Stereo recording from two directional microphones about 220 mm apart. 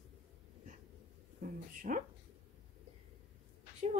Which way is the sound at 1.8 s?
35° right (ahead or behind).